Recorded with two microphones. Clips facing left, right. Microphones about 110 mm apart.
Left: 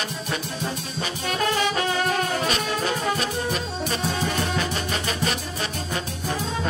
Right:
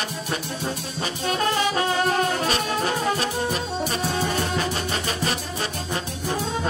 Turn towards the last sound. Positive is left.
turn(degrees=-30)  # may be behind; listen again after turning